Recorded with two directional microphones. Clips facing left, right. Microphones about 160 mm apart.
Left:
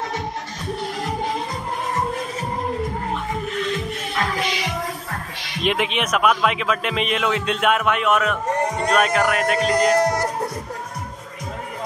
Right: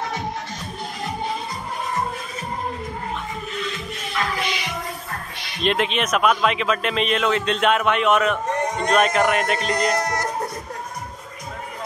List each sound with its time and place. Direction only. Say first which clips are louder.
5.6 s a man's voice: even; 10° left (ahead or behind)
9.9 s music: left 5 dB; 35° left (ahead or behind)